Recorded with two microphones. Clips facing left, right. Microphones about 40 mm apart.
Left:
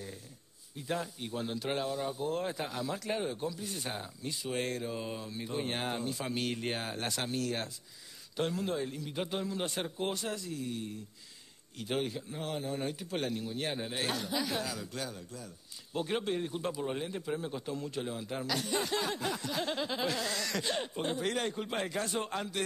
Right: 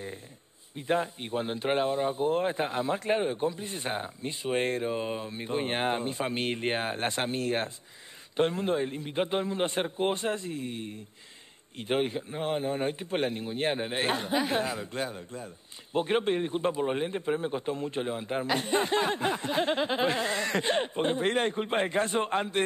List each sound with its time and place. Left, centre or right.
0.7 s speech: right